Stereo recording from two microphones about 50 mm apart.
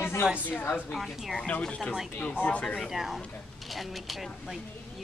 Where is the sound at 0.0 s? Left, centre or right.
Left.